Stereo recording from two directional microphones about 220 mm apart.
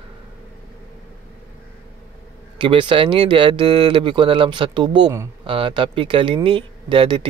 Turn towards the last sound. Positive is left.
turn(degrees=-20)  # may be behind; listen again after turning